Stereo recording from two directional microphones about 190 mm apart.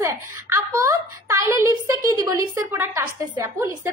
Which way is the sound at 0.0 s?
15° right (ahead or behind).